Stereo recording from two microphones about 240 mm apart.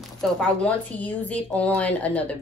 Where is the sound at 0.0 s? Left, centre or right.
Centre.